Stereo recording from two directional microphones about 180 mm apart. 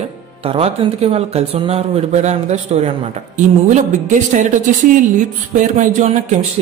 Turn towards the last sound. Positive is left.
turn(degrees=-45)  # may be behind; listen again after turning